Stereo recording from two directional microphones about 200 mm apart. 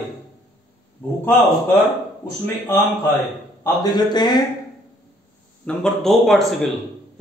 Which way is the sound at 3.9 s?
20° left (ahead or behind).